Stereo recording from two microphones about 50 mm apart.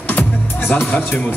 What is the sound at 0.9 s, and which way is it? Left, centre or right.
Speech, left.